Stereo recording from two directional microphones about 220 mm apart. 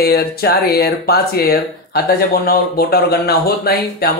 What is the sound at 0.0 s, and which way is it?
Speech, 45° left (ahead or behind).